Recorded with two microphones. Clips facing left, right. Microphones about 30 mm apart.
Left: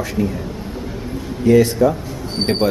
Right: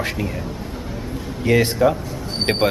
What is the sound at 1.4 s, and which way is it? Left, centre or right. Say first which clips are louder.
Speech: left 3 dB; right.